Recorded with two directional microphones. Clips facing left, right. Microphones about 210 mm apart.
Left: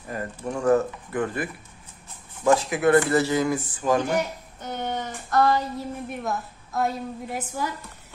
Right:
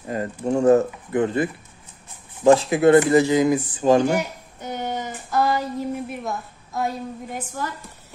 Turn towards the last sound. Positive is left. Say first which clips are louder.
# even
turn(degrees=10)  # may be behind; listen again after turning